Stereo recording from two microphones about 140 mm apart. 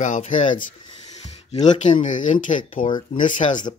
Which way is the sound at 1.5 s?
55° left (ahead or behind).